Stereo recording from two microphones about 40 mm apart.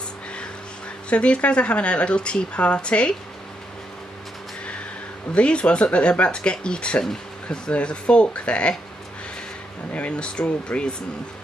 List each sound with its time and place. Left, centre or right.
1.1 s speech: left
5.3 s speech: left
9.9 s speech: left